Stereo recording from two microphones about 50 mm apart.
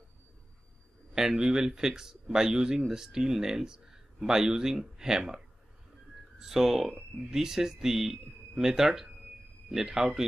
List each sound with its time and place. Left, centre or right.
1.1 s speech: centre
6.4 s speech: centre